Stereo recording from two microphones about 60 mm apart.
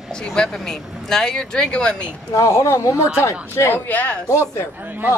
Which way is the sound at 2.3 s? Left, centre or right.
Left.